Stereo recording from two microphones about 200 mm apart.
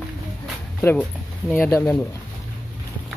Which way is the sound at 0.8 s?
15° left (ahead or behind).